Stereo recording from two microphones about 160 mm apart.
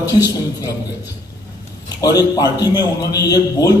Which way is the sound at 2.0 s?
25° left (ahead or behind).